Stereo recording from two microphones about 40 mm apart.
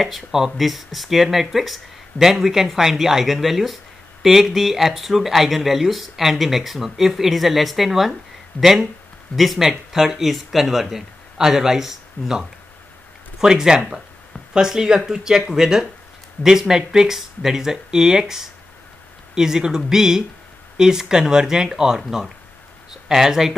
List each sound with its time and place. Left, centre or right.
0.0 s speech: centre